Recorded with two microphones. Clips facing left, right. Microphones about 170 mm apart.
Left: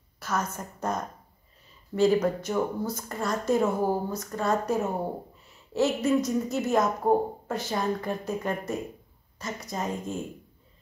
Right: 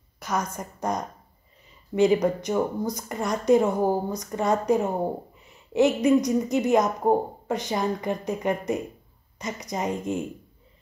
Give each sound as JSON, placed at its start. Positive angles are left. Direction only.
{"t": 0.2, "sound": "speech", "side_deg": -15}